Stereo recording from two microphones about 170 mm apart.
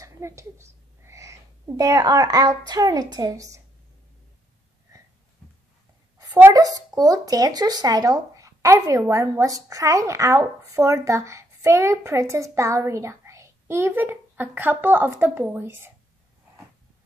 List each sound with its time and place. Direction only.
0.0 s a woman's voice: 15° right (ahead or behind)
4.9 s a sound: 20° right (ahead or behind)
6.1 s speech: 15° right (ahead or behind)